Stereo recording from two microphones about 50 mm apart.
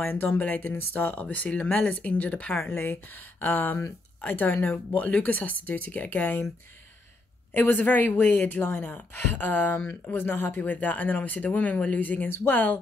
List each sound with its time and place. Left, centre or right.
0.0 s speech: left
1.2 s speech: left
2.7 s speech: left
5.0 s speech: left
7.5 s speech: left